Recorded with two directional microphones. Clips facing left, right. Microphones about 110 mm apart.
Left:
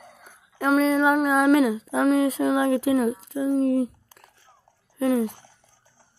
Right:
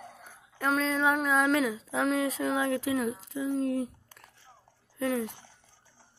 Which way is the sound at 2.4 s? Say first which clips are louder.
Left 7 dB; 15° left (ahead or behind).